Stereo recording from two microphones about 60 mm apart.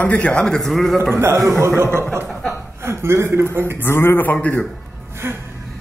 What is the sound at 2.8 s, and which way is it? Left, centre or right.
Speech, right.